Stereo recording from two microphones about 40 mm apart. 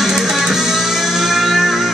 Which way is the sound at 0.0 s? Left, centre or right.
Centre.